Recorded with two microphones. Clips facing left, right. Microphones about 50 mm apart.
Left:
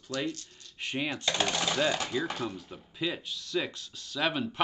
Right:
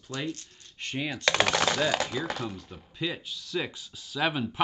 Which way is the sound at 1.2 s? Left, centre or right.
Right.